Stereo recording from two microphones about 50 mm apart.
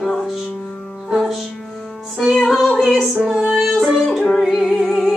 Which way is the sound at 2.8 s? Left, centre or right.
Centre.